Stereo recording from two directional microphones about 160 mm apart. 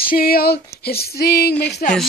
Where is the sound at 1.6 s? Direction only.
90° left.